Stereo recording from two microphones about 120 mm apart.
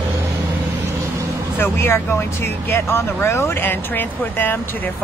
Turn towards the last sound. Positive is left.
turn(degrees=15)  # may be behind; listen again after turning